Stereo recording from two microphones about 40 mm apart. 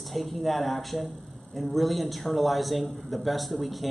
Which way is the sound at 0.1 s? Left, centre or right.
Centre.